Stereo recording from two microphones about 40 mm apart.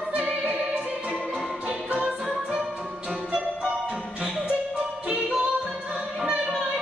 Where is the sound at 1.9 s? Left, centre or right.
Right.